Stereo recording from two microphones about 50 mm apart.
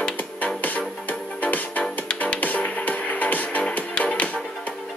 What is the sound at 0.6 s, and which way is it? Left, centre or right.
Music, left.